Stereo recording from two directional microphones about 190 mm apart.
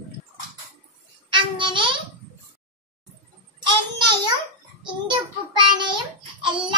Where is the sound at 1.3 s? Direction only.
25° right (ahead or behind).